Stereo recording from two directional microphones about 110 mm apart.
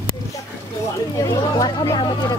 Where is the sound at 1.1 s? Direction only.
30° left (ahead or behind).